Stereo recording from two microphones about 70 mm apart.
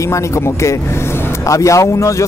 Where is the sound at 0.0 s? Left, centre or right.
Left.